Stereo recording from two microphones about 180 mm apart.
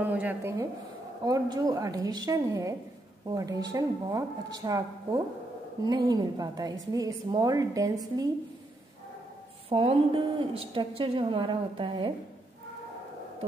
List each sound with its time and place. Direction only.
0.0 s a woman's voice: 10° right (ahead or behind)
9.7 s a woman's voice: 30° right (ahead or behind)